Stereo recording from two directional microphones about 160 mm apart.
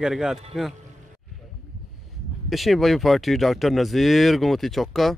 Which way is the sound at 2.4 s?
Centre (ahead or behind).